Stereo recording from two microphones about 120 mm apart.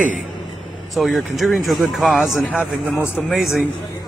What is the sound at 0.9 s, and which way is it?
Speech, centre (ahead or behind).